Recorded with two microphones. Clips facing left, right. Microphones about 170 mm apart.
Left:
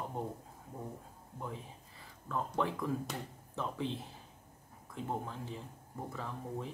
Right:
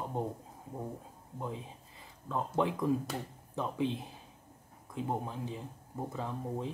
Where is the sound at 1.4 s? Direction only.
20° right (ahead or behind).